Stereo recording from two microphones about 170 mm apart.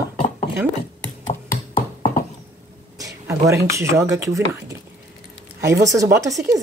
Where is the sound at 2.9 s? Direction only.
20° right (ahead or behind).